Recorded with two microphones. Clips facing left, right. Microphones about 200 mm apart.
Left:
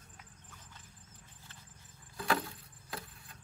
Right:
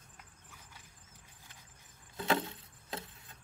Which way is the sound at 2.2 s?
25° right (ahead or behind).